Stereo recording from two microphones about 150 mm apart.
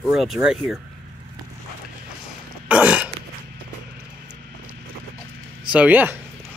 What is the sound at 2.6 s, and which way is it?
Throat clearing, 10° right (ahead or behind).